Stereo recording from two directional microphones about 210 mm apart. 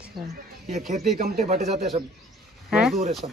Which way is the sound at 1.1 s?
40° right (ahead or behind).